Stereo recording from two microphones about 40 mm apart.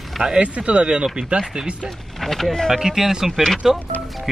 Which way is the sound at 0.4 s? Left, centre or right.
Right.